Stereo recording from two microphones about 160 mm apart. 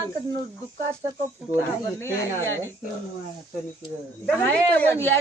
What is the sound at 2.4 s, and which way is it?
Speech, 15° left (ahead or behind).